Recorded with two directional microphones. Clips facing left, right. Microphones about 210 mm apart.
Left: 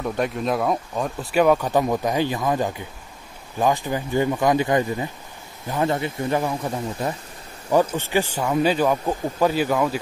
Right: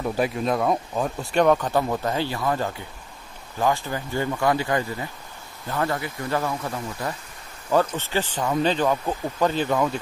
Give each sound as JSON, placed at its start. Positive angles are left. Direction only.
{"t": 0.0, "sound": "speech", "side_deg": -5}
{"t": 7.7, "sound": "speech", "side_deg": 10}